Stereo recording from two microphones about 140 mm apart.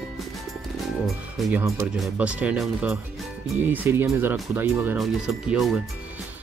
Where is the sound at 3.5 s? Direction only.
15° right (ahead or behind).